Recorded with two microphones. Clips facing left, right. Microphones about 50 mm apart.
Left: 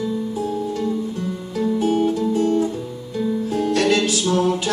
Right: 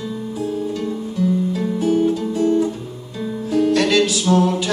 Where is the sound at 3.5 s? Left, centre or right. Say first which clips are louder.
Right 6 dB; right.